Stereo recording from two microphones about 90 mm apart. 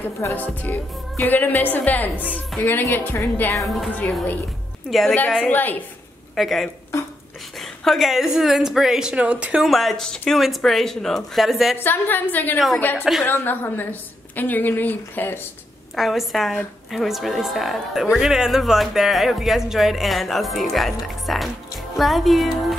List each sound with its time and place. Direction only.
0.2 s speech: 20° left (ahead or behind)
5.5 s speech: 20° left (ahead or behind)
6.3 s speech: centre (ahead or behind)
9.7 s speech: centre (ahead or behind)
11.7 s speech: 20° left (ahead or behind)
16.0 s speech: centre (ahead or behind)